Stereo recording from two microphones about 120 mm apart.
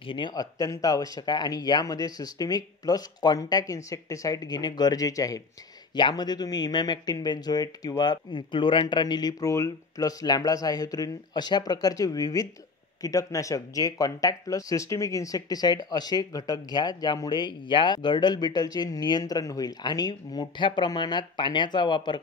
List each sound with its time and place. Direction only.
0.0 s speech: 45° left (ahead or behind)